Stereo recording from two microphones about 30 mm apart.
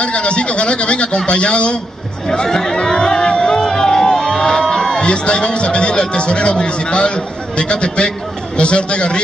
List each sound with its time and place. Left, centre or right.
0.0 s speech: left
2.4 s speech: centre
2.8 s music: left
8.5 s speech: left